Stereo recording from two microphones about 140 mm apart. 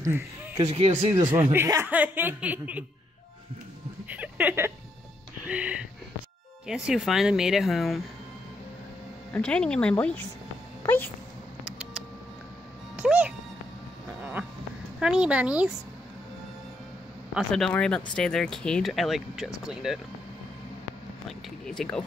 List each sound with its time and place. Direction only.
0.7 s speech: 45° right (ahead or behind)
1.1 s speech: 20° right (ahead or behind)
4.1 s a sound: 10° right (ahead or behind)
5.5 s speech: 10° right (ahead or behind)
9.3 s speech: 5° left (ahead or behind)
10.8 s music: 15° left (ahead or behind)
11.6 s a sound: 5° right (ahead or behind)
12.9 s music: 10° right (ahead or behind)
15.0 s speech: 5° right (ahead or behind)
17.3 s speech: centre (ahead or behind)
21.3 s speech: 5° left (ahead or behind)